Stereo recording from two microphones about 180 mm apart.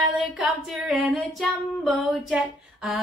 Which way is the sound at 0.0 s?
Centre (ahead or behind).